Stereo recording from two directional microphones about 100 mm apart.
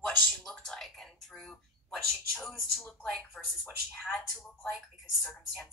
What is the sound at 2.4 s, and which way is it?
Speech, centre (ahead or behind).